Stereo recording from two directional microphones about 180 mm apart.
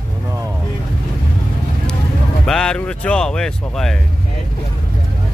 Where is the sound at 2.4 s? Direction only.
5° left (ahead or behind).